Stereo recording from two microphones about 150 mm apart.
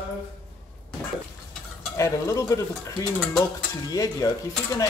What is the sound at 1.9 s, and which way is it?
Speech, 20° left (ahead or behind).